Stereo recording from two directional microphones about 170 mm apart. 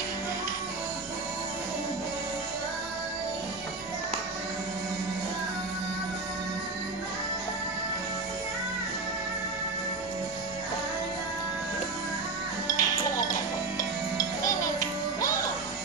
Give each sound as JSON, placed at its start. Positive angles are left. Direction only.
{"t": 12.6, "sound": "music", "side_deg": 20}